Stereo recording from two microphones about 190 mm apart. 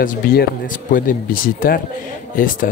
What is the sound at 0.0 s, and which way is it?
Speech, 50° left (ahead or behind).